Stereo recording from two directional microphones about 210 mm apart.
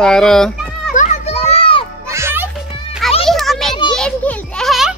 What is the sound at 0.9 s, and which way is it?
Children playing, 30° left (ahead or behind).